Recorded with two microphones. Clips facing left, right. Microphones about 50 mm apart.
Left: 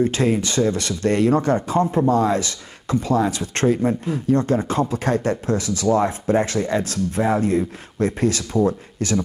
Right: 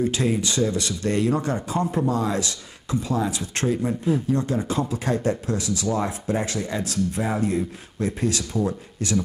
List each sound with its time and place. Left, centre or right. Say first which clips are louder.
0.0 s speech: left 4 dB; left